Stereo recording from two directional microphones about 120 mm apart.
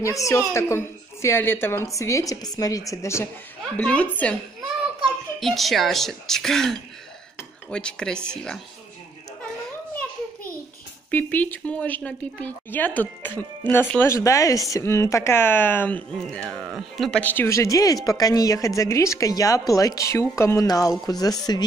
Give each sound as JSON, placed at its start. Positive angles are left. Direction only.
{"t": 0.0, "sound": "a woman's voice", "side_deg": 25}
{"t": 3.7, "sound": "a woman's voice", "side_deg": 10}
{"t": 5.4, "sound": "a woman's voice", "side_deg": 0}
{"t": 11.1, "sound": "a woman's voice", "side_deg": 15}
{"t": 16.2, "sound": "speech", "side_deg": 5}
{"t": 17.2, "sound": "a woman's voice", "side_deg": 15}